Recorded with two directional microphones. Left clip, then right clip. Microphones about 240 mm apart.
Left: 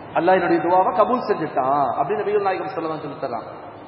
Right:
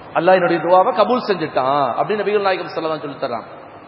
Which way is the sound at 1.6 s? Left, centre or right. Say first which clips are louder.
Right 2 dB; right.